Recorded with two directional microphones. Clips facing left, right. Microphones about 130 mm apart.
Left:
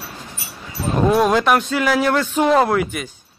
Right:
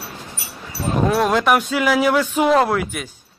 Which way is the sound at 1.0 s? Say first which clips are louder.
Left 2 dB; centre (ahead or behind).